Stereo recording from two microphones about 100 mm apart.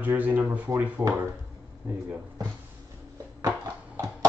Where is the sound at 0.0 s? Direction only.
20° right (ahead or behind).